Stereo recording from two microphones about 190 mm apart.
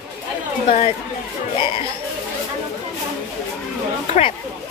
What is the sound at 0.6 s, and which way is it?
Speech, 30° left (ahead or behind).